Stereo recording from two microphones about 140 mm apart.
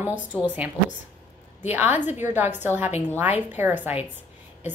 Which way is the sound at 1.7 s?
15° right (ahead or behind).